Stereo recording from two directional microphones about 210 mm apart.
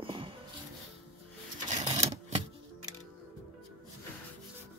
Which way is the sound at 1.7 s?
30° right (ahead or behind).